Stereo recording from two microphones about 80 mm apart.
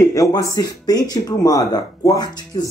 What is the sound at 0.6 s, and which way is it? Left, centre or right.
Speech, left.